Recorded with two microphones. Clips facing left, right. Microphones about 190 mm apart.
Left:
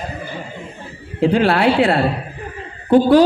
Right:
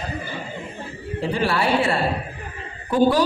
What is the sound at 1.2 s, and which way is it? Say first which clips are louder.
A woman's voice: left 8 dB; 65° left (ahead or behind).